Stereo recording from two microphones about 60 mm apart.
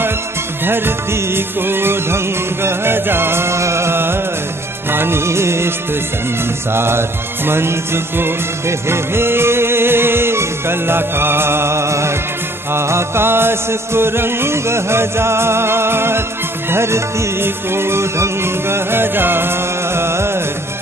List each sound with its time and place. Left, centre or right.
0.7 s music: right
6.7 s music: right